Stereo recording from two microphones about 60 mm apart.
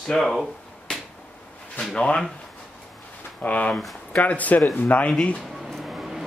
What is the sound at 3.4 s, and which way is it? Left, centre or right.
Speech, left.